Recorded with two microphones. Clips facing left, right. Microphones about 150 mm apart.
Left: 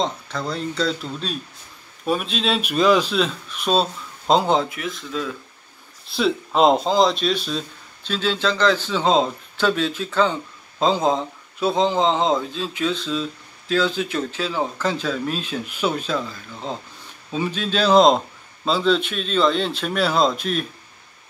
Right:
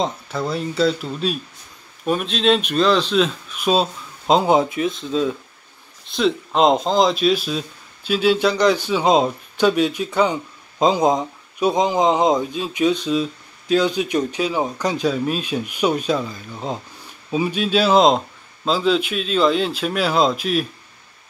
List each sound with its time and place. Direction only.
0.0 s speech: 5° right (ahead or behind)
4.6 s speech: 25° right (ahead or behind)
6.1 s speech: centre (ahead or behind)